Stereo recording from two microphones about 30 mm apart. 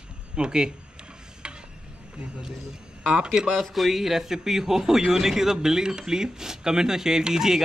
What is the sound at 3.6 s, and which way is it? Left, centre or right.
A man's voice, centre.